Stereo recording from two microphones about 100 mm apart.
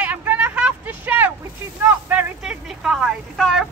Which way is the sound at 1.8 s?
15° right (ahead or behind).